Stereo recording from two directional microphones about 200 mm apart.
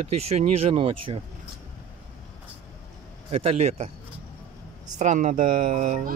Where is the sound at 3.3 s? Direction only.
30° right (ahead or behind).